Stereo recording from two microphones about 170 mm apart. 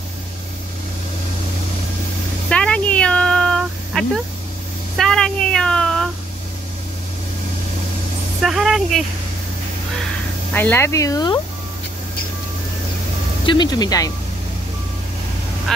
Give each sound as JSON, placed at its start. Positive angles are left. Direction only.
{"t": 2.5, "sound": "a sound", "side_deg": 5}
{"t": 8.4, "sound": "speech", "side_deg": 0}
{"t": 10.5, "sound": "speech", "side_deg": 10}
{"t": 13.5, "sound": "speech", "side_deg": 25}